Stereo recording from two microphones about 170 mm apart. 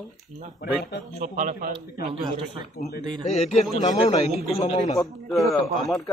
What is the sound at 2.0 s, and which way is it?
Speech, 30° right (ahead or behind).